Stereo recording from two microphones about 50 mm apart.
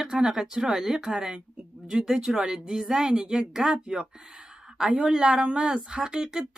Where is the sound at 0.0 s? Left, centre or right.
Centre.